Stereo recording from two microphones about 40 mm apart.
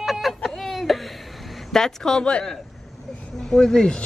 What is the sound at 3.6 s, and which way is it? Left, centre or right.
Speech, centre.